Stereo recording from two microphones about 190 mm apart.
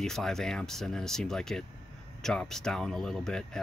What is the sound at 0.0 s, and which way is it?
Speech, 5° left (ahead or behind).